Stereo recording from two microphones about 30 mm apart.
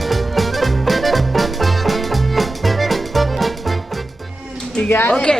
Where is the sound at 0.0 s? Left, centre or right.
Centre.